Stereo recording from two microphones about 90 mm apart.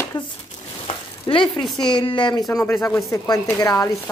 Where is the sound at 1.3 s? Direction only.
75° left (ahead or behind).